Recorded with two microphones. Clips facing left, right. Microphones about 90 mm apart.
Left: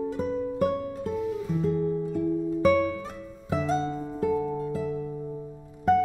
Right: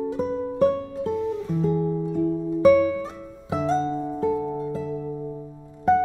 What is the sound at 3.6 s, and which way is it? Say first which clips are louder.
Music: right 7 dB; 25° right (ahead or behind).